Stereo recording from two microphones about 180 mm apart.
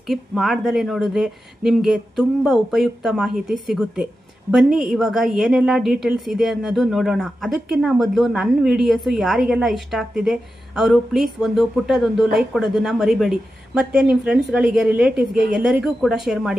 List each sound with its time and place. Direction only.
0.1 s speech: centre (ahead or behind)